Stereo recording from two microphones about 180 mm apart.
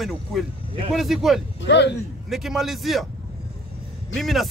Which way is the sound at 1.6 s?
75° left (ahead or behind).